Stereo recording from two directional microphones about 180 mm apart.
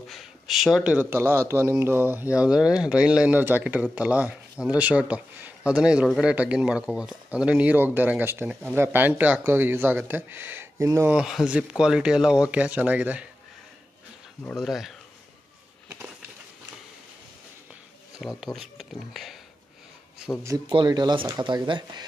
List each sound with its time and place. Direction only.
0.1 s speech: centre (ahead or behind)
14.4 s speech: 5° left (ahead or behind)
18.2 s speech: centre (ahead or behind)
20.4 s speech: 25° right (ahead or behind)